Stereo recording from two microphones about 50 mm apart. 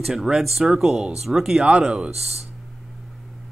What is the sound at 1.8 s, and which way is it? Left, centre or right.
Speech, centre.